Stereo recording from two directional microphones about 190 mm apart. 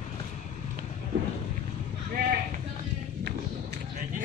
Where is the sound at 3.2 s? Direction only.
55° right (ahead or behind).